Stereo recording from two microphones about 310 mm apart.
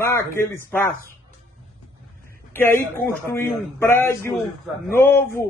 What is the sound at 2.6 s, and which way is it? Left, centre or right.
A man's voice, centre.